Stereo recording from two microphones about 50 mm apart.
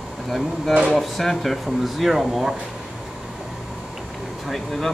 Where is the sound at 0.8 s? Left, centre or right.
Centre.